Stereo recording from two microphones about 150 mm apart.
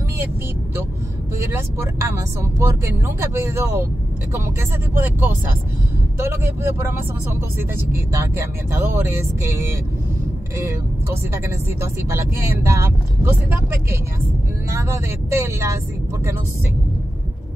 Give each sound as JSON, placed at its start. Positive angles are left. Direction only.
{"t": 1.5, "sound": "speech", "side_deg": -20}
{"t": 11.4, "sound": "speech", "side_deg": -15}